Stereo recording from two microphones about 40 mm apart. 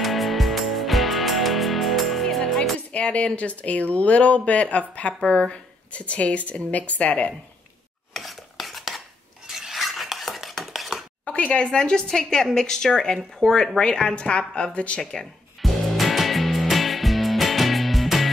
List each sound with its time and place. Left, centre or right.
0.0 s music: centre
2.9 s a sound: left
3.3 s speech: left
8.1 s stir: centre
11.2 s a woman's voice: left
15.6 s music: centre